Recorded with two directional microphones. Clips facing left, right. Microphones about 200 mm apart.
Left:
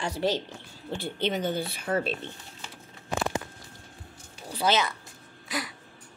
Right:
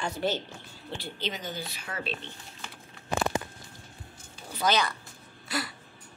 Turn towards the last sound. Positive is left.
turn(degrees=15)  # may be behind; listen again after turning